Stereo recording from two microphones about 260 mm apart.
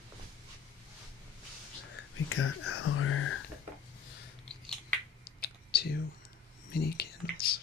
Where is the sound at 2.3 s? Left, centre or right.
Left.